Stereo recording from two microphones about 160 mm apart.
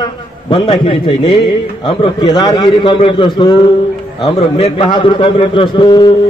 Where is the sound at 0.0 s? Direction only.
30° left (ahead or behind).